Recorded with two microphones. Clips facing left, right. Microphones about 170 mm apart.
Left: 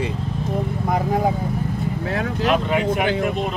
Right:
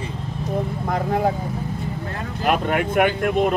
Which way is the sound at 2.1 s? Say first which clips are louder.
Left 6 dB; 90° left.